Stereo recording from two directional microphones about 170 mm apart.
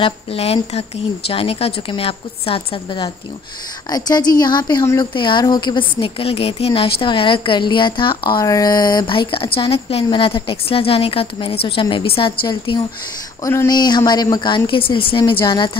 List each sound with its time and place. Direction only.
0.0 s a woman's voice: 35° left (ahead or behind)